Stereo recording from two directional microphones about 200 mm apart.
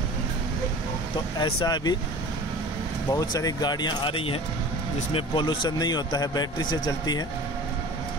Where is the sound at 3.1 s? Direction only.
20° left (ahead or behind).